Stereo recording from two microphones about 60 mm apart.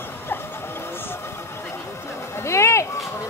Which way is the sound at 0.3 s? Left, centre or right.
Left.